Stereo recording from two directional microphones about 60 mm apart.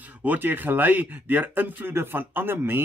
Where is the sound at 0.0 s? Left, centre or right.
Right.